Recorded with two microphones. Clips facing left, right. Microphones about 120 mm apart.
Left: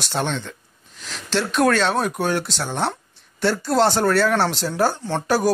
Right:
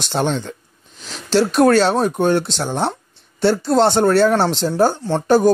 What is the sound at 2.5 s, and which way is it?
Speech, centre (ahead or behind).